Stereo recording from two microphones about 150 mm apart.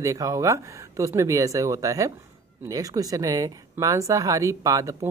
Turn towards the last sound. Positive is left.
turn(degrees=-20)  # may be behind; listen again after turning